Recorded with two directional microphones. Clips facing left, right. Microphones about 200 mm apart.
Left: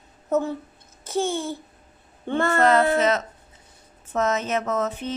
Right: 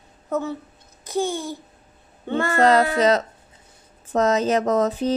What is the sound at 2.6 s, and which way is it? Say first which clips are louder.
Speech: right 3 dB; 35° right (ahead or behind).